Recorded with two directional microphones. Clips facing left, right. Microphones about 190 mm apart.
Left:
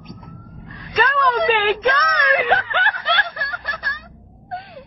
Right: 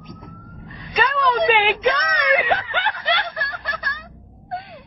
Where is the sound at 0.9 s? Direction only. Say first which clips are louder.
Left 1 dB; 15° right (ahead or behind).